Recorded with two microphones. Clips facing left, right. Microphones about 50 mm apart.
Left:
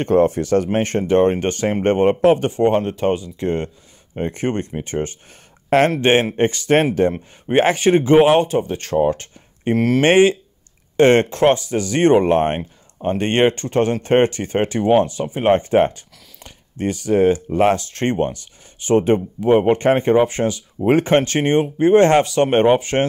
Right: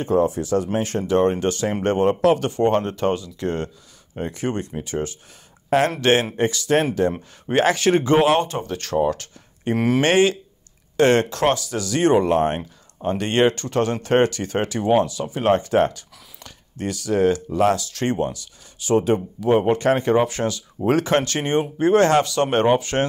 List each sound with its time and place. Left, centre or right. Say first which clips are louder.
0.0 s speech: left 4 dB; left
2.7 s speech: left 2 dB; centre
4.3 s speech: left 3 dB; left
5.9 s speech: left 3 dB; left
7.1 s speech: left 3 dB; left
9.0 s a sound: left 3 dB; left
9.8 s speech: left 2 dB; centre
10.0 s speech: left 6 dB; left